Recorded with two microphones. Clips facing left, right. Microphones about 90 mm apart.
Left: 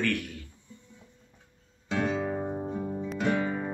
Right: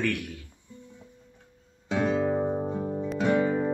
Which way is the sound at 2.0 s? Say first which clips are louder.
Right 7 dB; 20° right (ahead or behind).